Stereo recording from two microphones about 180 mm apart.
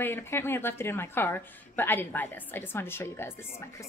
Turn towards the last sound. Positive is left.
turn(degrees=15)  # may be behind; listen again after turning